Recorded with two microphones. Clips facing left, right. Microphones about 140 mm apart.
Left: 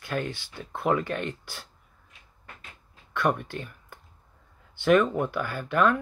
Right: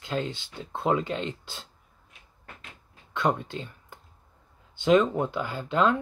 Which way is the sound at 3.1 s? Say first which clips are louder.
Even; 20° right (ahead or behind).